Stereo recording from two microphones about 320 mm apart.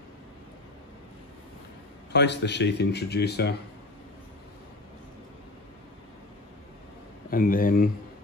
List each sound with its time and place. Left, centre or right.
2.1 s speech: left
7.2 s speech: left